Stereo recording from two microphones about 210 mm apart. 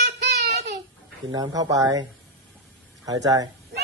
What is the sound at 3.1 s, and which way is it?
Speech, 15° right (ahead or behind).